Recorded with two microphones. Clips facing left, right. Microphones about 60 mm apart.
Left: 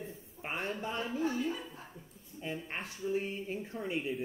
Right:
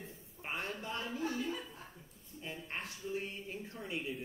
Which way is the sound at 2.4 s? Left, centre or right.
Left.